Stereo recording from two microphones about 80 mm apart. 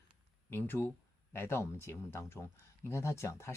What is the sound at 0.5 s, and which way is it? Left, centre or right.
Speech, left.